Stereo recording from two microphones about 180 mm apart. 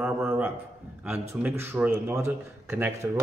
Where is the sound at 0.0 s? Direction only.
10° right (ahead or behind).